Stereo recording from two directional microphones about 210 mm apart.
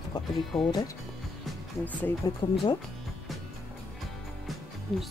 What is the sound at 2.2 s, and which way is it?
Speech, 20° left (ahead or behind).